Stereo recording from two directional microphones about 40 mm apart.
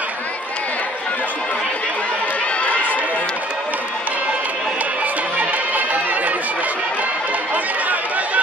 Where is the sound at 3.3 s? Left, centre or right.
Right.